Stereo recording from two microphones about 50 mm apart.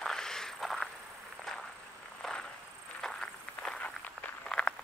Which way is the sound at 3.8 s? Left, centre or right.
Left.